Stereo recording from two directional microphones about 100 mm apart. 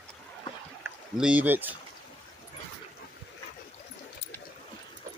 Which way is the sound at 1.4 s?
20° right (ahead or behind).